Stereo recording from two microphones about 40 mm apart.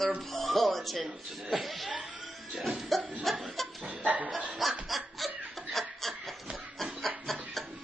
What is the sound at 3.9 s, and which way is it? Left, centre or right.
Chicken, right.